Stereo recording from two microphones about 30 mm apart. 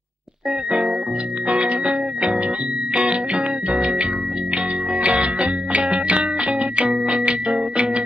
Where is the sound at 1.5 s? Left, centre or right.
Right.